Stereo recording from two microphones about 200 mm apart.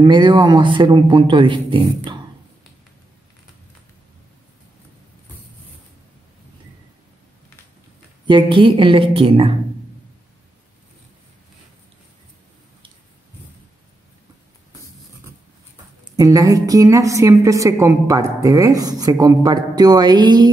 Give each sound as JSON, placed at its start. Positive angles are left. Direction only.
{"t": 0.0, "sound": "speech", "side_deg": -25}
{"t": 8.3, "sound": "speech", "side_deg": -25}
{"t": 16.2, "sound": "a woman's voice", "side_deg": -15}